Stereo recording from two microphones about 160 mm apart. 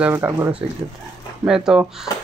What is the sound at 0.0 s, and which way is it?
Speech, 15° right (ahead or behind).